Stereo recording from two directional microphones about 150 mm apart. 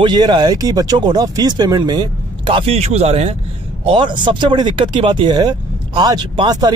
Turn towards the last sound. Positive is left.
turn(degrees=-30)  # may be behind; listen again after turning